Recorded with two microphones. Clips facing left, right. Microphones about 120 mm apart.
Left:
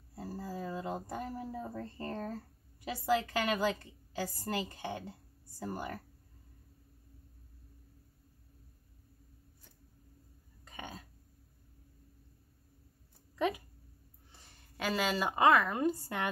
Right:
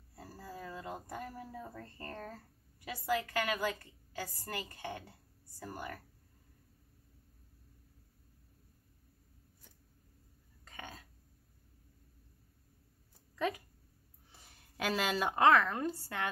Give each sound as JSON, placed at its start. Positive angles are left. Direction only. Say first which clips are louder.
{"t": 0.1, "sound": "speech", "louder": "left 7 dB", "side_deg": 25}
{"t": 10.6, "sound": "burping", "louder": "left 3 dB", "side_deg": 15}
{"t": 14.3, "sound": "a woman's voice", "louder": "even", "side_deg": -5}